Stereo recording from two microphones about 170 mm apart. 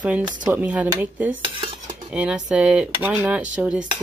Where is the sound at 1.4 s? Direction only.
30° right (ahead or behind).